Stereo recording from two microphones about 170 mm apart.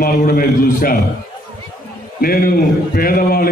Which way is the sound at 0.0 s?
60° left (ahead or behind).